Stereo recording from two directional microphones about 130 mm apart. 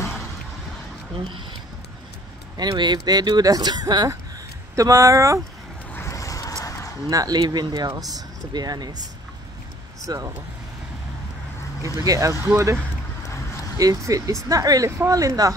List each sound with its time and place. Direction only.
2.5 s speech: 30° right (ahead or behind)
5.9 s a sound: 25° left (ahead or behind)
7.1 s speech: 30° right (ahead or behind)
10.0 s speech: 25° right (ahead or behind)
11.8 s speech: 25° right (ahead or behind)